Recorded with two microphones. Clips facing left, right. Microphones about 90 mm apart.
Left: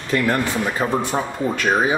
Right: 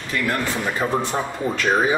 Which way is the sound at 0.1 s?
20° left (ahead or behind).